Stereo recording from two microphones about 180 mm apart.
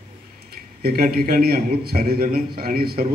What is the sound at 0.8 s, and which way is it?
A man's voice, 55° right (ahead or behind).